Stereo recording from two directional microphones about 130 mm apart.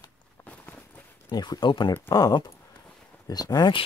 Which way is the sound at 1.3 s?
35° left (ahead or behind).